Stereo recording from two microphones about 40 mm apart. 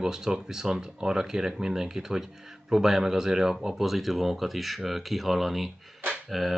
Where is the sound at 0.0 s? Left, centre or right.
Centre.